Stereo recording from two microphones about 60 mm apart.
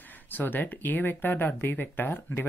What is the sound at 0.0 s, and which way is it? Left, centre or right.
Speech, left.